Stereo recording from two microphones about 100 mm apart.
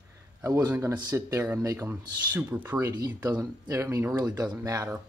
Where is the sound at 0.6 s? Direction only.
25° right (ahead or behind).